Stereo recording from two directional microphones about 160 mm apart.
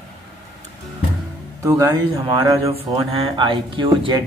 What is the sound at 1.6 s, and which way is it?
Speech, 20° right (ahead or behind).